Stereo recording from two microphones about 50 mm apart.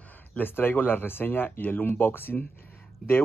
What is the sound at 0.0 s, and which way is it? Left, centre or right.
Speech, left.